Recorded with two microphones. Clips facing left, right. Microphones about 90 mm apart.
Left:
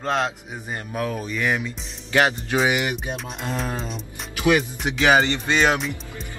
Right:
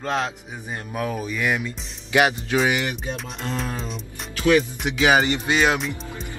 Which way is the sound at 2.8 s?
20° left (ahead or behind).